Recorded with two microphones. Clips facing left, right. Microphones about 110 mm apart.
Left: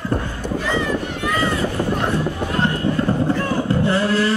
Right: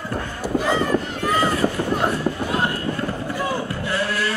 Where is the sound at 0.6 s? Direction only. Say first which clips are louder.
Right 1 dB; 40° right (ahead or behind).